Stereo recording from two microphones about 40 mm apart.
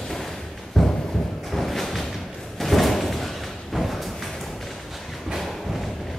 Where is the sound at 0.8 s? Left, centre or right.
Centre.